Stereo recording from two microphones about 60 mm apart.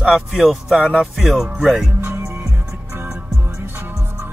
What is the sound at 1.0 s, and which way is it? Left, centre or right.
Speech, centre.